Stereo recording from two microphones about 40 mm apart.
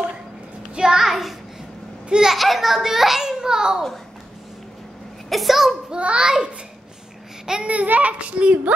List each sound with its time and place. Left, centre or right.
0.7 s a child's voice: centre
1.0 s child singing: centre
2.0 s a child's voice: centre
2.3 s a child's voice: centre
5.3 s a child's voice: centre
5.9 s a child's voice: right
6.2 s a child's voice: centre
7.6 s a child's voice: right